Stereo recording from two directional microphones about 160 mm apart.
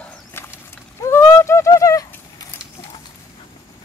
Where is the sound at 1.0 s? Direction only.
15° left (ahead or behind).